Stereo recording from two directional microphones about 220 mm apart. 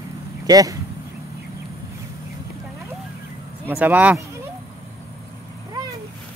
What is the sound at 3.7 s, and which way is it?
Speech, 10° right (ahead or behind).